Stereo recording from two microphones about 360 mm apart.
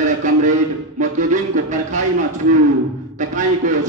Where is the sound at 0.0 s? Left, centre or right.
Centre.